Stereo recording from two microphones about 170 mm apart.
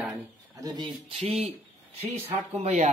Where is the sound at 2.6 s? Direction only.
40° right (ahead or behind).